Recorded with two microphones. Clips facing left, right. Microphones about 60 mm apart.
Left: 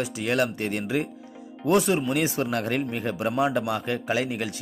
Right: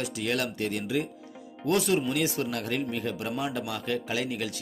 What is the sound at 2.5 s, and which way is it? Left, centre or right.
Speech, left.